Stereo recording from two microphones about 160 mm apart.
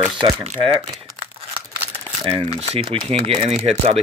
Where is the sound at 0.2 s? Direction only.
35° right (ahead or behind).